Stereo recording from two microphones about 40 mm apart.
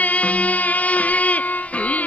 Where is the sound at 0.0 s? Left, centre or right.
Left.